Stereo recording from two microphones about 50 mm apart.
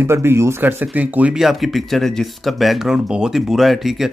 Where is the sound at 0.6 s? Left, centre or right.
Right.